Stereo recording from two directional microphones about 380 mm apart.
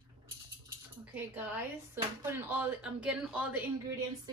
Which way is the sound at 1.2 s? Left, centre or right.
Centre.